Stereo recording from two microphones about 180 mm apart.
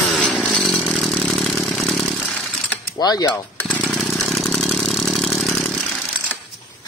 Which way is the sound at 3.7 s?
5° left (ahead or behind).